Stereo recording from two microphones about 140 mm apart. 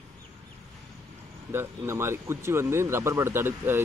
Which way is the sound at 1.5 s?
20° right (ahead or behind).